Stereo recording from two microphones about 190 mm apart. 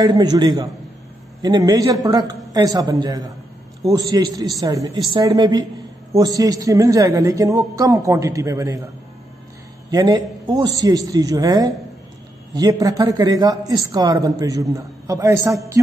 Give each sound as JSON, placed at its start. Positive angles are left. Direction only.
{"t": 0.0, "sound": "a man's voice", "side_deg": -20}
{"t": 9.8, "sound": "speech", "side_deg": -20}